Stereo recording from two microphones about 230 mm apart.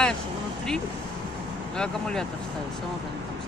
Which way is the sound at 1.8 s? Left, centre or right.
Centre.